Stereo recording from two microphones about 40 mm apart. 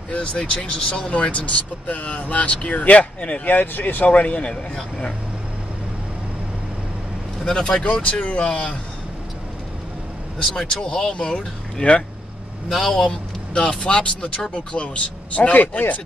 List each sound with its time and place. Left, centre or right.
0.1 s speech: left
3.5 s speech: left
4.1 s speech: left
4.5 s speech: left
7.4 s speech: left
7.8 s speech: left
10.7 s speech: centre
12.6 s a man's voice: centre
13.5 s speech: left
15.3 s speech: left